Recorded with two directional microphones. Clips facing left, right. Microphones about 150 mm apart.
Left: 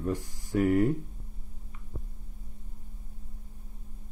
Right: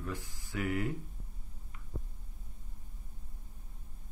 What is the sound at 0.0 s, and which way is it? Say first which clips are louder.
Speech: left 9 dB; 40° left (ahead or behind).